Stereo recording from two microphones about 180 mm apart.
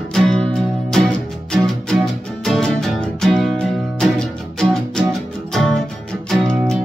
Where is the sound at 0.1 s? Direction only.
5° left (ahead or behind).